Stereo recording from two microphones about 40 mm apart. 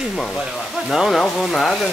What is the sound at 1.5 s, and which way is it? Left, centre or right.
Speech, centre.